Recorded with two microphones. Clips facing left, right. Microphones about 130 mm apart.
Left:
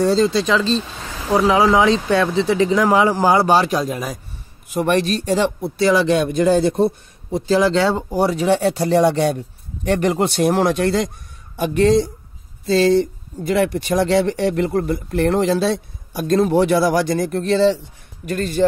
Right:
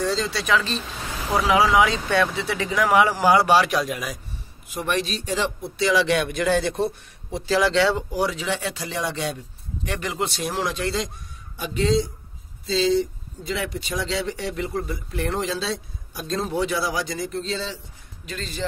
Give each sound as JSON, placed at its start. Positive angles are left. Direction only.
{"t": 0.0, "sound": "speech", "side_deg": 45}
{"t": 0.4, "sound": "speech", "side_deg": 25}
{"t": 4.6, "sound": "speech", "side_deg": 50}